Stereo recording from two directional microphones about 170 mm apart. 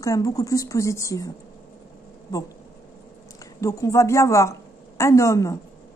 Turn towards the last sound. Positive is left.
turn(degrees=15)  # may be behind; listen again after turning